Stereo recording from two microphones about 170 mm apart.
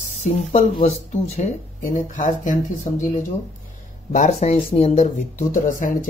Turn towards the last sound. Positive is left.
turn(degrees=50)  # may be behind; listen again after turning